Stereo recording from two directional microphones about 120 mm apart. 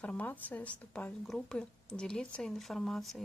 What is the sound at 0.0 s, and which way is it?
A woman's voice, 10° left (ahead or behind).